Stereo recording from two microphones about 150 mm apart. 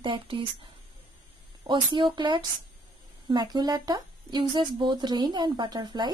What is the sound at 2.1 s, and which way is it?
Speech, 30° right (ahead or behind).